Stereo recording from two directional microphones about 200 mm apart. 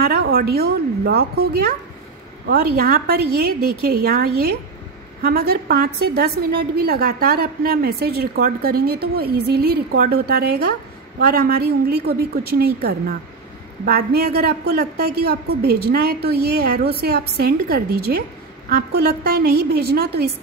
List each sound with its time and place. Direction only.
0.0 s a woman's voice: 50° right (ahead or behind)